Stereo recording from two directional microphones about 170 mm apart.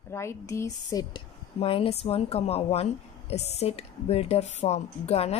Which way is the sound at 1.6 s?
35° left (ahead or behind).